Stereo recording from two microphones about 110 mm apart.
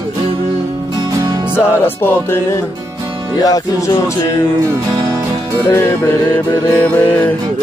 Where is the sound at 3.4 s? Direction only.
30° left (ahead or behind).